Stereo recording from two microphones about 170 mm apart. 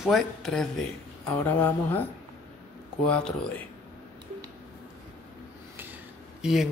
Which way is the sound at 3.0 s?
5° left (ahead or behind).